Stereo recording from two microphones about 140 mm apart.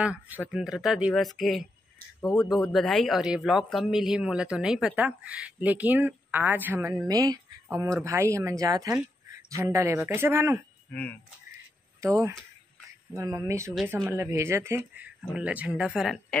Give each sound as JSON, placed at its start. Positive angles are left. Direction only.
{"t": 0.0, "sound": "speech", "side_deg": -10}
{"t": 10.9, "sound": "speech", "side_deg": 10}
{"t": 12.0, "sound": "speech", "side_deg": -20}